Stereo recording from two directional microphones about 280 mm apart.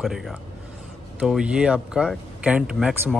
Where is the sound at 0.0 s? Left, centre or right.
Centre.